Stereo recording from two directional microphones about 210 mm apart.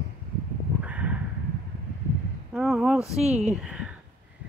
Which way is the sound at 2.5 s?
Centre (ahead or behind).